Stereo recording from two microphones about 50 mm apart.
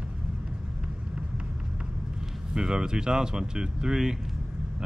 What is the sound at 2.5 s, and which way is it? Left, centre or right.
Speech, centre.